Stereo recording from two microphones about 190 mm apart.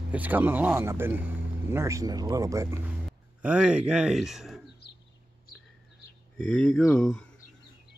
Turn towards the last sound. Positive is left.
turn(degrees=5)  # may be behind; listen again after turning